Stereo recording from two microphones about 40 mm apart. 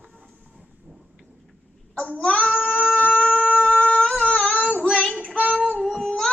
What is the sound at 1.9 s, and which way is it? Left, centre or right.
Child singing, left.